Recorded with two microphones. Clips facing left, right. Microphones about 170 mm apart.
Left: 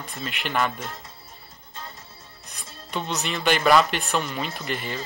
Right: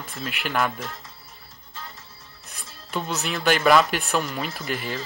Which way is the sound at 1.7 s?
20° left (ahead or behind).